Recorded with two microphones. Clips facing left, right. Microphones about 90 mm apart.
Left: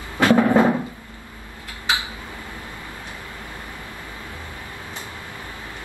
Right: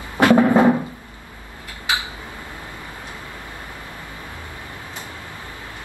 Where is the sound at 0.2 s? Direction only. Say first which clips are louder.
Right 2 dB; 20° right (ahead or behind).